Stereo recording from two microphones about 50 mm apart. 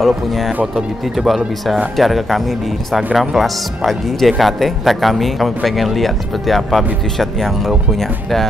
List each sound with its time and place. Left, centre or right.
0.0 s speech: centre